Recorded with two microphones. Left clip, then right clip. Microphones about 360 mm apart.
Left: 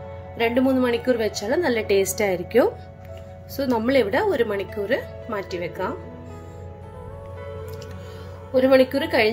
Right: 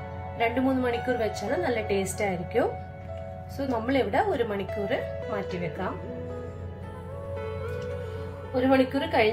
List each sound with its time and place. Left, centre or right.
0.4 s speech: left
8.6 s speech: left